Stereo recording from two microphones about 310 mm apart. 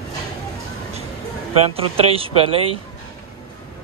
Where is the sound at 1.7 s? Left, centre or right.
Centre.